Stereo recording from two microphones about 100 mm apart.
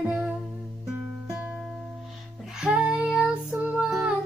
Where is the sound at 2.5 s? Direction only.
10° right (ahead or behind).